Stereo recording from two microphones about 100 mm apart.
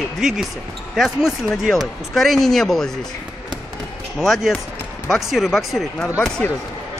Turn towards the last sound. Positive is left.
turn(degrees=10)  # may be behind; listen again after turning